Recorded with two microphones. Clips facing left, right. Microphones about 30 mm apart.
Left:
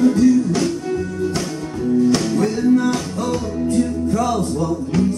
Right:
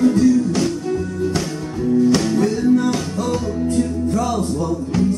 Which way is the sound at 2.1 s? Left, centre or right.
Centre.